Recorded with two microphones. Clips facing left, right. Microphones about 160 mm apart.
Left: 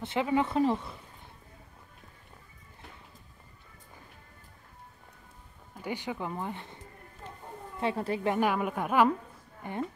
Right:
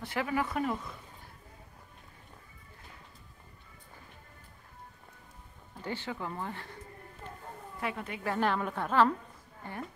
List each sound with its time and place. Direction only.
0.0 s speech: 25° left (ahead or behind)
5.8 s speech: 15° left (ahead or behind)
7.8 s a woman's voice: 35° left (ahead or behind)
8.3 s speech: 10° left (ahead or behind)